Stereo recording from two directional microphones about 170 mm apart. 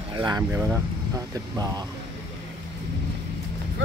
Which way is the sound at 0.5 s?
10° right (ahead or behind).